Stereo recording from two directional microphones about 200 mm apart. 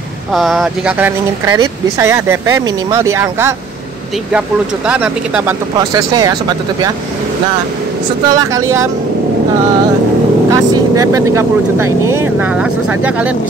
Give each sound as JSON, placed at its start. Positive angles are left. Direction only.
{"t": 0.3, "sound": "speech", "side_deg": 0}
{"t": 4.8, "sound": "speech", "side_deg": -5}
{"t": 5.8, "sound": "speech", "side_deg": -20}
{"t": 8.3, "sound": "speech", "side_deg": -15}
{"t": 10.5, "sound": "speech", "side_deg": -15}